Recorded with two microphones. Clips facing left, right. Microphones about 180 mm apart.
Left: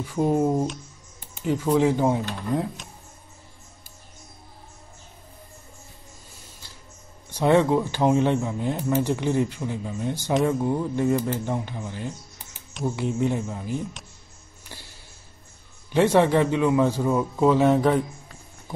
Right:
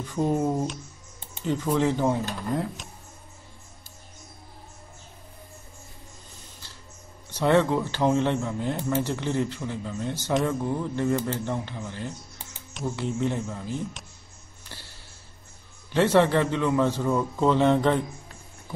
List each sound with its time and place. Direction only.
0.0 s speech: 10° left (ahead or behind)
1.4 s speech: 10° left (ahead or behind)
7.2 s speech: 15° left (ahead or behind)
15.9 s speech: 15° left (ahead or behind)